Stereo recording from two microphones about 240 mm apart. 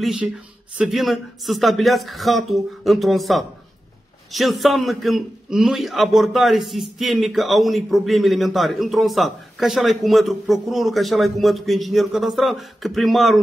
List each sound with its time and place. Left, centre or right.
0.0 s a man's voice: centre